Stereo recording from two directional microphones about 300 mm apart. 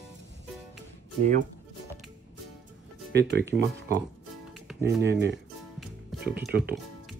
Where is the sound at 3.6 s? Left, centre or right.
Right.